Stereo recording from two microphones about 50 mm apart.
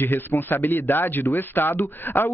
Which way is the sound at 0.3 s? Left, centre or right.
Left.